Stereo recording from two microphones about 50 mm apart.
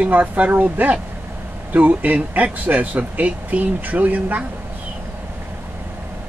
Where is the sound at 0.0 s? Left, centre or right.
Right.